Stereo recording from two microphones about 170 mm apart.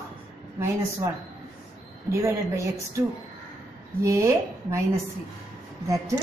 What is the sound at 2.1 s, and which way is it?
Speech, 15° right (ahead or behind).